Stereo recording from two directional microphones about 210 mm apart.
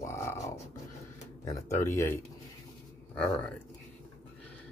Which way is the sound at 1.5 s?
15° left (ahead or behind).